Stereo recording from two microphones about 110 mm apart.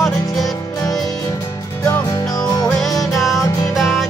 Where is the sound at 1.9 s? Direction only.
30° left (ahead or behind).